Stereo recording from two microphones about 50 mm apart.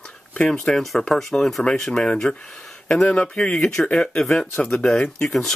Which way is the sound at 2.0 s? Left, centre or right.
Centre.